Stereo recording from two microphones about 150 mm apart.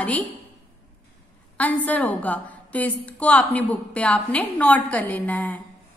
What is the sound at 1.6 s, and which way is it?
A woman's voice, 10° left (ahead or behind).